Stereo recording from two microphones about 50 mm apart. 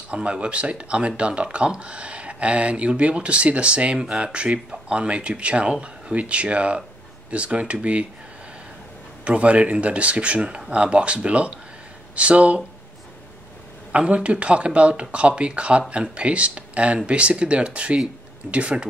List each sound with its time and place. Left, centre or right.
0.1 s speech: right
9.2 s speech: right
13.9 s speech: right